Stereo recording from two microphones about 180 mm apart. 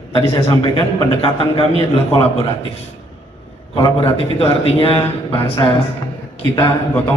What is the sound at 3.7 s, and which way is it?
A man's voice, 30° left (ahead or behind).